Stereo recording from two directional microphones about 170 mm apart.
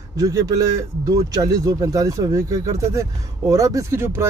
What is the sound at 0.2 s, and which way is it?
Speech, 20° right (ahead or behind).